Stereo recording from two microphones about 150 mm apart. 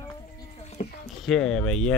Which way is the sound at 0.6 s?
50° left (ahead or behind).